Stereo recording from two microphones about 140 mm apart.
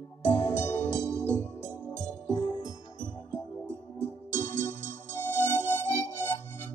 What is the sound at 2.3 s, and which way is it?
Music, 30° left (ahead or behind).